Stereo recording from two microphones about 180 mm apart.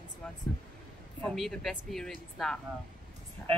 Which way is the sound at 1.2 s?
Centre (ahead or behind).